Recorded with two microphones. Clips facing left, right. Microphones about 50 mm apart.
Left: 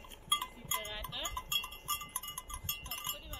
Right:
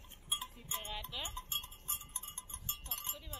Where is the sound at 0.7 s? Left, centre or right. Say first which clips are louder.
Left 5 dB; left.